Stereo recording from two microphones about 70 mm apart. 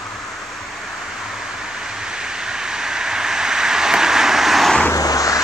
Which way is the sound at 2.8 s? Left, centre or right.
Centre.